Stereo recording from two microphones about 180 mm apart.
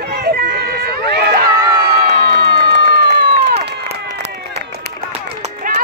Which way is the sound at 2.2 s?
70° right (ahead or behind).